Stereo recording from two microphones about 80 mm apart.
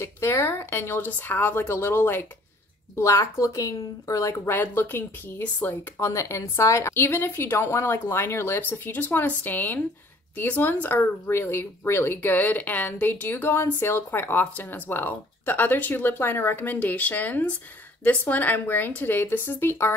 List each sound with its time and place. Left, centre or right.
0.0 s speech: left
3.0 s speech: left
4.6 s speech: left
5.9 s speech: left